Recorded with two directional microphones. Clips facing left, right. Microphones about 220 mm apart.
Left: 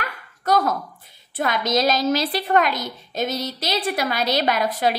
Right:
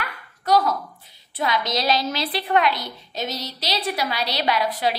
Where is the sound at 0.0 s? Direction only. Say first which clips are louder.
Left 2 dB; 45° left (ahead or behind).